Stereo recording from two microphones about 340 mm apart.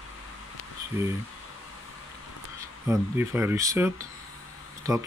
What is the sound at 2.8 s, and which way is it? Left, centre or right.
Speech, centre.